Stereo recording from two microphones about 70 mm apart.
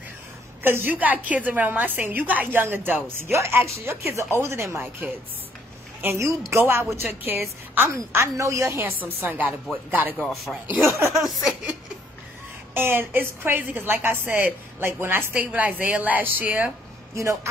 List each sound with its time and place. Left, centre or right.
0.7 s a woman's voice: right
3.3 s a woman's voice: right
6.0 s a woman's voice: right
6.6 s a woman's voice: right
7.9 s a woman's voice: right
10.1 s speech: centre
12.7 s a woman's voice: right
17.1 s a woman's voice: right